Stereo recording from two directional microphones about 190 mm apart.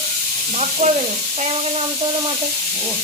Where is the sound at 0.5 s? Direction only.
35° right (ahead or behind).